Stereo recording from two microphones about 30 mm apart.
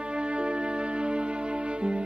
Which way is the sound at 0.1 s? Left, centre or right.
Right.